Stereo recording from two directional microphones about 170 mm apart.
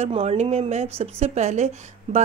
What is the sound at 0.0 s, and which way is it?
Speech, 35° right (ahead or behind).